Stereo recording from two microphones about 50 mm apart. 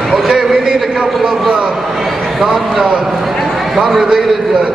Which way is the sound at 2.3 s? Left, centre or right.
Centre.